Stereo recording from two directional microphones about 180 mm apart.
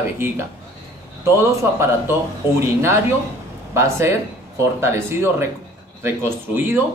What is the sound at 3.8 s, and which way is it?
A man's voice, 15° right (ahead or behind).